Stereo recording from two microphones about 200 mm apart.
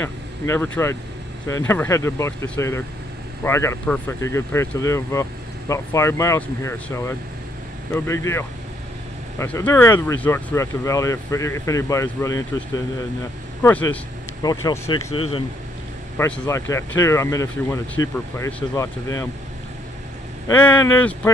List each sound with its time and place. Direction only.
0.0 s speech: 10° left (ahead or behind)
15.0 s speech: 90° left
16.2 s speech: 15° left (ahead or behind)
20.4 s speech: 10° left (ahead or behind)